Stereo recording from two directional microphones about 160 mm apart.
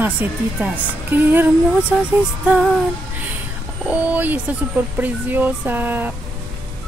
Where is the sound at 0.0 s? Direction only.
10° right (ahead or behind).